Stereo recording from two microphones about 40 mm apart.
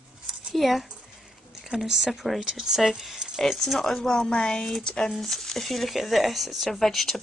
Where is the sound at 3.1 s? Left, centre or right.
Centre.